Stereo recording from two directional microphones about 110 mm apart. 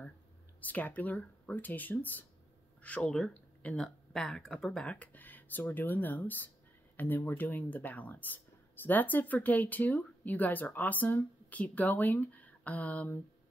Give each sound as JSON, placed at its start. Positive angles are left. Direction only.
{"t": 0.6, "sound": "speech", "side_deg": 15}